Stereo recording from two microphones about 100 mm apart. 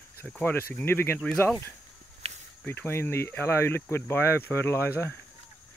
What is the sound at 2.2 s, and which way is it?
Cricket, 90° right.